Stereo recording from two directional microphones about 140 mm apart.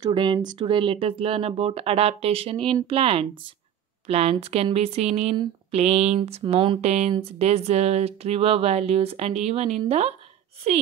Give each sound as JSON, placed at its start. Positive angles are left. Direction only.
{"t": 0.0, "sound": "speech", "side_deg": -35}
{"t": 6.8, "sound": "speech", "side_deg": -50}